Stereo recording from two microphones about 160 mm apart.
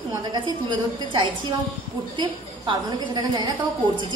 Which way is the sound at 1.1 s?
30° right (ahead or behind).